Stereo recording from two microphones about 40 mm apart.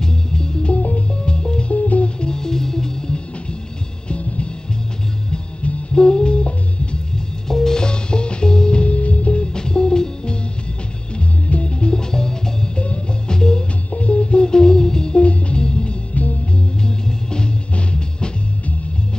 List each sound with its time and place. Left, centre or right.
0.0 s music: centre
1.7 s music: left; by 3.2 s centre
4.1 s music: left
5.6 s music: left
7.4 s music: centre
11.1 s music: left
13.9 s music: left